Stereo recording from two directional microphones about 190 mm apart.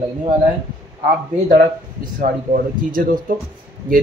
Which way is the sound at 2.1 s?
45° right (ahead or behind).